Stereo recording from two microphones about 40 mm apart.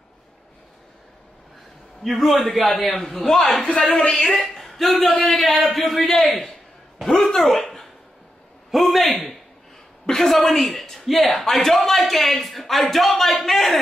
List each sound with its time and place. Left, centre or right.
2.0 s a man's voice: centre
3.8 s speech: left
4.3 s a man's voice: centre
7.6 s a sound: centre
8.7 s a man's voice: centre